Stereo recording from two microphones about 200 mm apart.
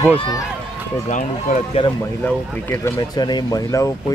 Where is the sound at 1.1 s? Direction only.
40° left (ahead or behind).